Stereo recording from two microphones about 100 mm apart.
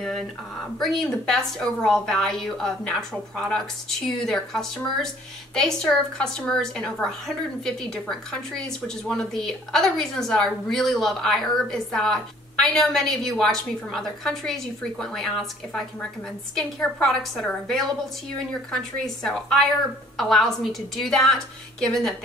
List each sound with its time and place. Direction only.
0.7 s a woman's voice: centre (ahead or behind)